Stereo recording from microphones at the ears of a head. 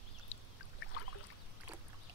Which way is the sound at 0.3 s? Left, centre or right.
Left.